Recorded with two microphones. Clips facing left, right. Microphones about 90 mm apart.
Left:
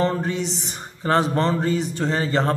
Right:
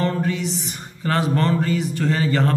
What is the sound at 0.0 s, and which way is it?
Music, 30° left (ahead or behind).